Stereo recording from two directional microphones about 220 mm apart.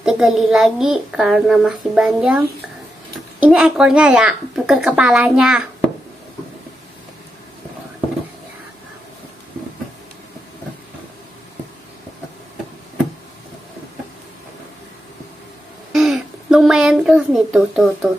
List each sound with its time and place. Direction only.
0.0 s a child's voice: centre (ahead or behind)
3.4 s a child's voice: 5° right (ahead or behind)
15.9 s a sound: centre (ahead or behind)